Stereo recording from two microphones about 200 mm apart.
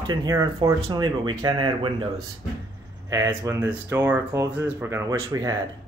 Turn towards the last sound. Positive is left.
turn(degrees=-20)  # may be behind; listen again after turning